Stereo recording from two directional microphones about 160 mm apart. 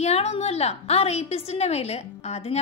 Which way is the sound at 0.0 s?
40° left (ahead or behind).